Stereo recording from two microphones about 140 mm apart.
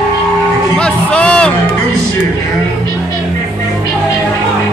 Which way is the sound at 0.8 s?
10° left (ahead or behind).